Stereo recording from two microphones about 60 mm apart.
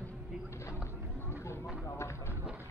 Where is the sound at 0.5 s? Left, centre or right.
Left.